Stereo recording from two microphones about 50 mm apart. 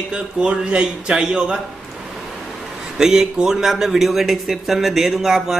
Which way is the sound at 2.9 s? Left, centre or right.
Centre.